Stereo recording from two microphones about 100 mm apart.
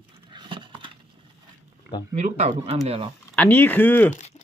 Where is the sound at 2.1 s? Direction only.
90° right.